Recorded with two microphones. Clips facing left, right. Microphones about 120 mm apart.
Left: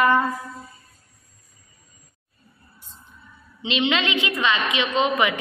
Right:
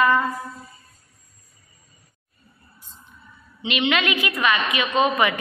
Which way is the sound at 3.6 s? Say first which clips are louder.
Even; 25° left (ahead or behind).